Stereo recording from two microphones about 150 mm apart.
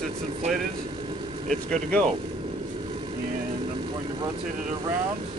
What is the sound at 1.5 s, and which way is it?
Speech, 5° left (ahead or behind).